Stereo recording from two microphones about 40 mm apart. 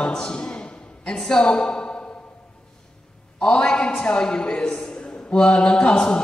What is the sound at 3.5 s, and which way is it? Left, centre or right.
A woman's voice, left.